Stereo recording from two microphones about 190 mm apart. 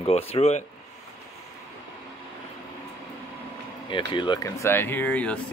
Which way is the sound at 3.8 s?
25° left (ahead or behind).